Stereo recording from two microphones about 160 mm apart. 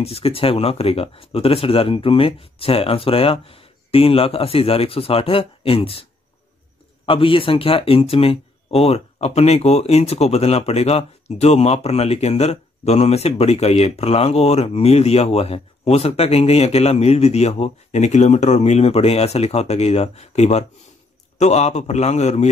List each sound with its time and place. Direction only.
0.0 s speech: 35° left (ahead or behind)
7.1 s a man's voice: 35° left (ahead or behind)